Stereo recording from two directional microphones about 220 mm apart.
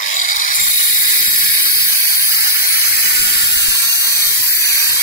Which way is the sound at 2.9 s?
50° left (ahead or behind).